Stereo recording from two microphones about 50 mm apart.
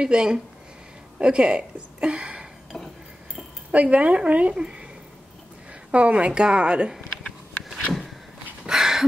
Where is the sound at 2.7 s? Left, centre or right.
Centre.